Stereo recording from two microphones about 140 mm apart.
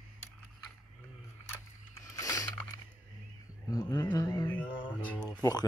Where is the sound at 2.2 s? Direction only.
25° left (ahead or behind).